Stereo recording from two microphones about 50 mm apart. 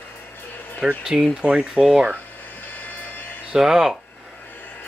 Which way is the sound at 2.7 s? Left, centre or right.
Left.